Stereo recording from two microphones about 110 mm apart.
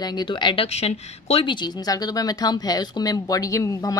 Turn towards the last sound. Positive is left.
turn(degrees=30)  # may be behind; listen again after turning